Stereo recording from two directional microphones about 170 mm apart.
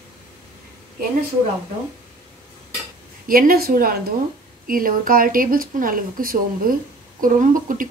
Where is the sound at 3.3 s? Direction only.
60° right (ahead or behind).